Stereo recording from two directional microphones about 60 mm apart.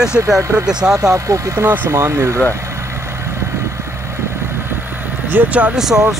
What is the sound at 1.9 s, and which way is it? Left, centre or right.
Speech, right.